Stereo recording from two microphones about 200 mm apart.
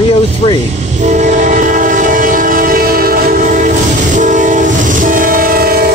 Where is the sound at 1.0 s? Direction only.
35° right (ahead or behind).